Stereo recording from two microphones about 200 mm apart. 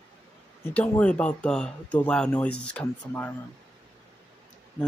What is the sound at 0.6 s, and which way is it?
Speech, 5° left (ahead or behind).